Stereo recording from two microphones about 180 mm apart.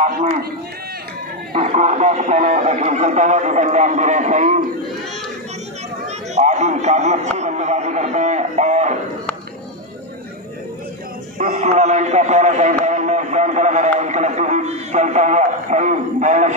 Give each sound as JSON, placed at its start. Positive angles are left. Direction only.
{"t": 0.0, "sound": "a man's voice", "side_deg": -35}
{"t": 1.5, "sound": "a man's voice", "side_deg": -40}
{"t": 6.3, "sound": "a man's voice", "side_deg": -40}
{"t": 11.3, "sound": "a man's voice", "side_deg": -45}